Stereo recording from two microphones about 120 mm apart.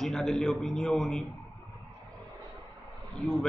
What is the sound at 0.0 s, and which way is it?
A man's voice, centre (ahead or behind).